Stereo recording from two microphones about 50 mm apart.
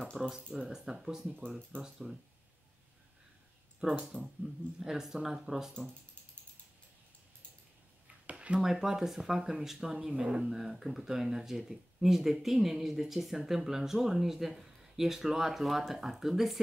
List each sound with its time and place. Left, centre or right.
0.0 s a sound: centre
0.5 s speech: centre
4.1 s speech: centre
4.7 s speech: centre
8.3 s a sound: right
8.5 s speech: centre